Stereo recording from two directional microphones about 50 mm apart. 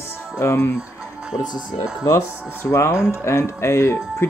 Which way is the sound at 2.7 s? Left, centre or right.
Left.